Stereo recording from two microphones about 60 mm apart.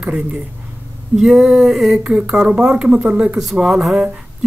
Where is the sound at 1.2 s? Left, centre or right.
Centre.